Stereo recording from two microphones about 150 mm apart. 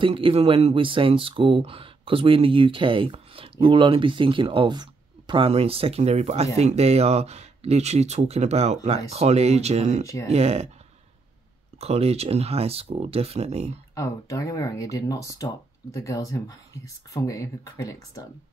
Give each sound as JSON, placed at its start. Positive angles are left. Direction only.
{"t": 0.0, "sound": "speech", "side_deg": -35}
{"t": 11.8, "sound": "speech", "side_deg": -45}
{"t": 13.9, "sound": "speech", "side_deg": 25}